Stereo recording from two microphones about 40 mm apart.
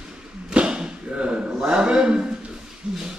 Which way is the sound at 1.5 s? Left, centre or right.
Right.